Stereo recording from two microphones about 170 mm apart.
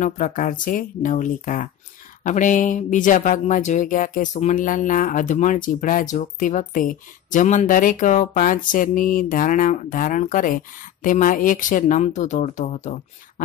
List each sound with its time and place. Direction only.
0.0 s speech: 50° left (ahead or behind)